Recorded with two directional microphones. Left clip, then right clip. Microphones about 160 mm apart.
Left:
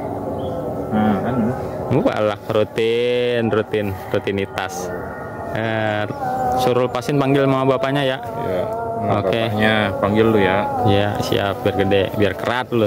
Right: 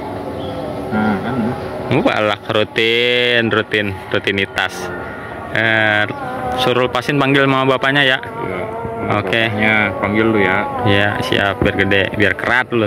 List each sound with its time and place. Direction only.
1.9 s speech: 5° left (ahead or behind)
7.9 s speech: 15° left (ahead or behind)
9.6 s speech: 50° left (ahead or behind)
10.9 s speech: 15° left (ahead or behind)